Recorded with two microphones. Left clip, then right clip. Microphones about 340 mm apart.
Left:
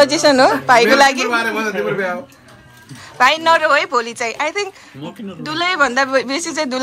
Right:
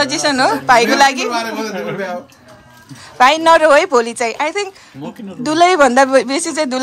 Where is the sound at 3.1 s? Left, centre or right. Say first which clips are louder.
Right 3 dB; centre.